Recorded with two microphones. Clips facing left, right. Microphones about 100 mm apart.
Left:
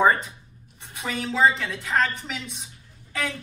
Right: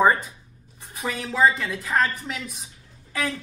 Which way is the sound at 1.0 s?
5° right (ahead or behind).